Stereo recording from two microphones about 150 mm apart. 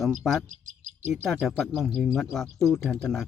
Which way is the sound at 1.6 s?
Centre (ahead or behind).